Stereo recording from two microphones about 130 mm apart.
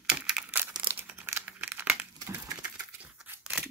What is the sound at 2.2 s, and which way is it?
Typing, 25° right (ahead or behind).